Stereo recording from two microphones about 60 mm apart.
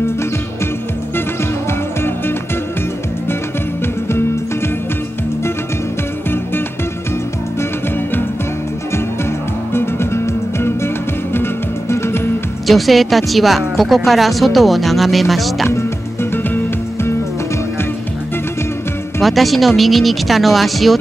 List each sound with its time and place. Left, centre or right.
1.7 s music: left
9.8 s music: left
12.6 s speech: centre
16.4 s music: left
19.2 s speech: centre